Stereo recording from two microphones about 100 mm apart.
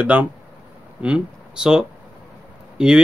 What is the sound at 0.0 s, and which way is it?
Speech, 15° right (ahead or behind).